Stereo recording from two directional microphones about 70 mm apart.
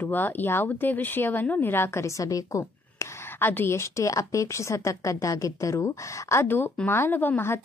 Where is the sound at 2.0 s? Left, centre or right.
Left.